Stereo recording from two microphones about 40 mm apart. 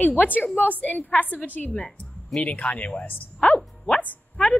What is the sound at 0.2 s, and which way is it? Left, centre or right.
A woman's voice, left.